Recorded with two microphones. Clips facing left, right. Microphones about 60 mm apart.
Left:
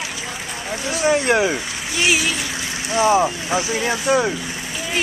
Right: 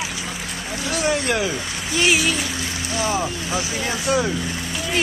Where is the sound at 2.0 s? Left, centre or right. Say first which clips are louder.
Even; centre.